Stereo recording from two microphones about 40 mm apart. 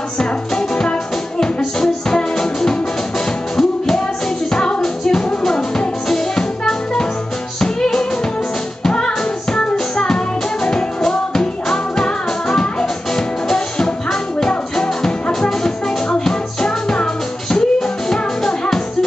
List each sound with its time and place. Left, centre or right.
0.2 s music: centre